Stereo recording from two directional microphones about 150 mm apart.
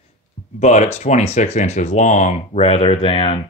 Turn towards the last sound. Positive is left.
turn(degrees=35)  # may be behind; listen again after turning